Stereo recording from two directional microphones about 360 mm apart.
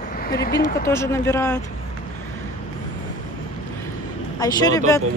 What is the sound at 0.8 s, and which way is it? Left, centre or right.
Speech, centre.